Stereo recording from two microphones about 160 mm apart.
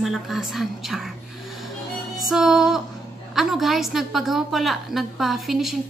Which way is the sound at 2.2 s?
Centre (ahead or behind).